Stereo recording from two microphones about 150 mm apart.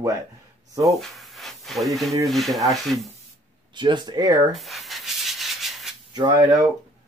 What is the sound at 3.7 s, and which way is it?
Speech, 30° right (ahead or behind).